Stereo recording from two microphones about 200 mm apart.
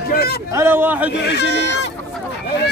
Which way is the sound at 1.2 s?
60° left (ahead or behind).